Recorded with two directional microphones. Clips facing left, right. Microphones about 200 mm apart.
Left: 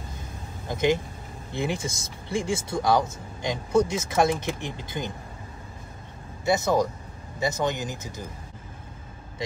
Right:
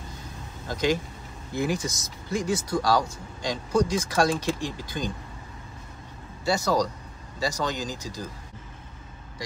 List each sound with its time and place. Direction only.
0.7 s speech: 20° left (ahead or behind)
6.4 s speech: 20° left (ahead or behind)